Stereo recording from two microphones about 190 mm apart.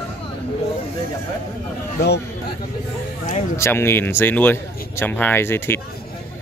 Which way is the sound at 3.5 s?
15° left (ahead or behind).